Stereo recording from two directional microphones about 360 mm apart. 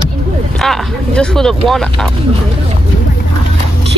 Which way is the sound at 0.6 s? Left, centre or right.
Centre.